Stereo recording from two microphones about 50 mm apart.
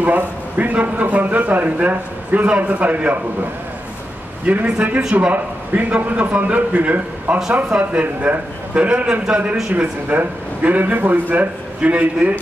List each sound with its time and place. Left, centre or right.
0.0 s a man's voice: right
4.5 s a man's voice: right